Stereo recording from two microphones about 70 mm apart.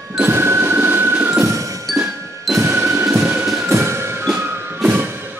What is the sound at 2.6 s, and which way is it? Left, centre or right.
Music, right.